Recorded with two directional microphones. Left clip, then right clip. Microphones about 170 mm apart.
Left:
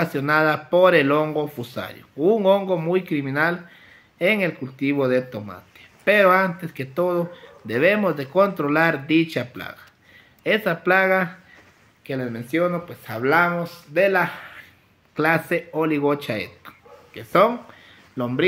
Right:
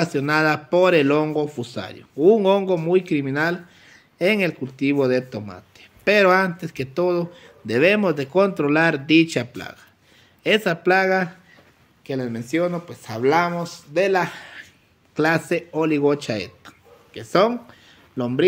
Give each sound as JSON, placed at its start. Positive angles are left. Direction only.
{"t": 0.0, "sound": "speech", "side_deg": -40}